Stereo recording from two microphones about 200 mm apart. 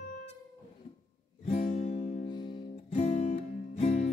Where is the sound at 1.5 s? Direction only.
35° left (ahead or behind).